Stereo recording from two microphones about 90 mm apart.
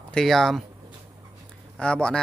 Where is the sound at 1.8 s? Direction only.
10° left (ahead or behind).